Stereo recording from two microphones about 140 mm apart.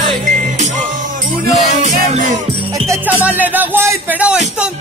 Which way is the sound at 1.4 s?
60° right (ahead or behind).